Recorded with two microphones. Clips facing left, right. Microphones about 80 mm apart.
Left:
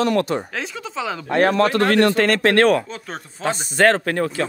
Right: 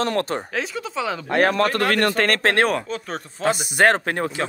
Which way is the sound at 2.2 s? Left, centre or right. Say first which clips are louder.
Left 3 dB; right.